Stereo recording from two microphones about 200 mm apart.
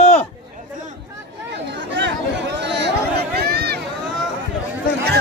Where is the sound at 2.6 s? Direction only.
60° right (ahead or behind).